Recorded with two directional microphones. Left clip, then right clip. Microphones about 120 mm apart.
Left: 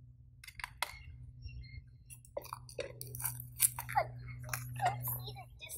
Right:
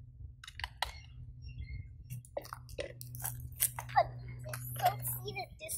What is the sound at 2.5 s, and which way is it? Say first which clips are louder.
Chewing: even; 10° left (ahead or behind).